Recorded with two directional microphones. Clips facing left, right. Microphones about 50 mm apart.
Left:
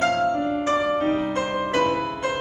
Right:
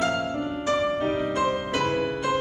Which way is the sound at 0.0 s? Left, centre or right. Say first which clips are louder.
Left 5 dB; left.